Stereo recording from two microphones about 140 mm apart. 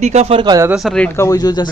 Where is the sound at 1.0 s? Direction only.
20° left (ahead or behind).